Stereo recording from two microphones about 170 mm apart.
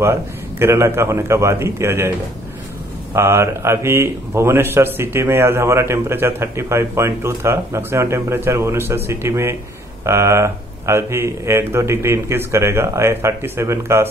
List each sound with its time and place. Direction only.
0.0 s speech: 15° right (ahead or behind)